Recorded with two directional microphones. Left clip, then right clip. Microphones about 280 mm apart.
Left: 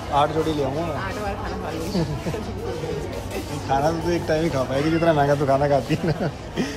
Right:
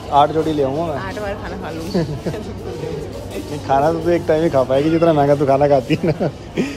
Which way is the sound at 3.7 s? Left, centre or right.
Right.